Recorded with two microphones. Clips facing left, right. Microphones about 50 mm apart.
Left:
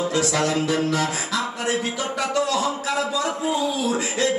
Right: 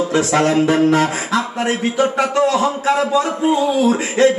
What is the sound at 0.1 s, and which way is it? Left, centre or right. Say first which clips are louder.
A man's voice: right 7 dB; right.